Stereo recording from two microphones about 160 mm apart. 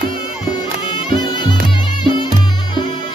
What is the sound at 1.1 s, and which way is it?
Music, 30° left (ahead or behind).